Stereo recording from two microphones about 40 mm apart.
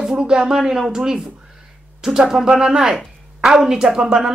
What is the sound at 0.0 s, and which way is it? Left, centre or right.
Speech, centre.